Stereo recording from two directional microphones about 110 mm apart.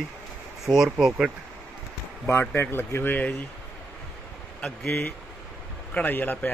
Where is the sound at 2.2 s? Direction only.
15° left (ahead or behind).